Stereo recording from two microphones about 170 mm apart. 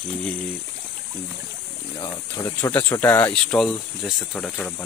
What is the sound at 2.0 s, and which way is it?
Speech, 20° left (ahead or behind).